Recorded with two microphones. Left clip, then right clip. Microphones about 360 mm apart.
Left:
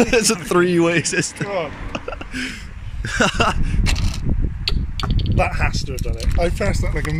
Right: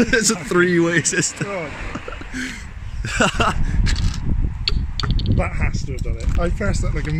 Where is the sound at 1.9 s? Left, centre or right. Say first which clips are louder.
Left 2 dB; centre.